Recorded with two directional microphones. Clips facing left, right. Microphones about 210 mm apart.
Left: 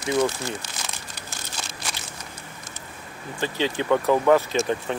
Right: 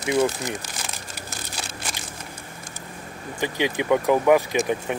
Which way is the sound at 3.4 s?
15° right (ahead or behind).